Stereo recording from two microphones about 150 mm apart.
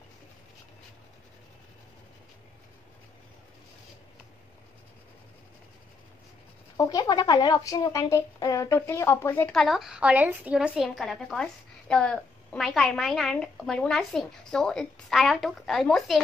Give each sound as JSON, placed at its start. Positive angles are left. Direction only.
{"t": 6.8, "sound": "a woman's voice", "side_deg": 25}